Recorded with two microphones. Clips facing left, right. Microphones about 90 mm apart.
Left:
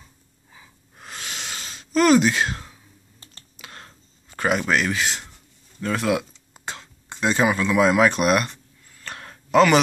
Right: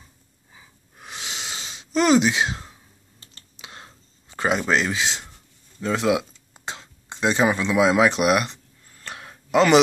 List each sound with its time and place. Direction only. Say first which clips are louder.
1.1 s gasp: even; 20° right (ahead or behind)
3.5 s computer keyboard: even; 20° right (ahead or behind)
4.4 s speech: even; 25° right (ahead or behind)
5.8 s a sound: right 1 dB; 20° right (ahead or behind)
8.0 s speech: even; 15° right (ahead or behind)
9.0 s a sound: left 1 dB; 10° right (ahead or behind)